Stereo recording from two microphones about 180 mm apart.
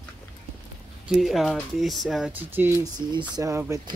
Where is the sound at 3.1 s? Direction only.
20° right (ahead or behind).